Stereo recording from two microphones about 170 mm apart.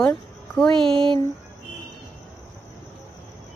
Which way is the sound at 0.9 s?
30° right (ahead or behind).